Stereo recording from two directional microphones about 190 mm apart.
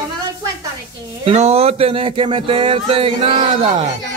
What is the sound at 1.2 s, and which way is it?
Speech, 35° right (ahead or behind).